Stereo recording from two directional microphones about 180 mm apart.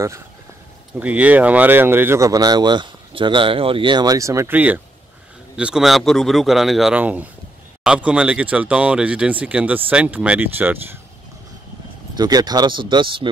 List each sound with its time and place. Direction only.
0.9 s speech: 10° right (ahead or behind)
12.2 s speech: 20° right (ahead or behind)